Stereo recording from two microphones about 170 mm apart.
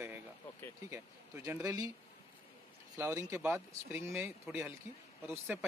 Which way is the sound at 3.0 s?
15° right (ahead or behind).